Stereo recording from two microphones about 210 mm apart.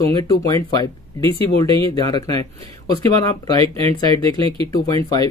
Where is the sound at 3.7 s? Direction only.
25° right (ahead or behind).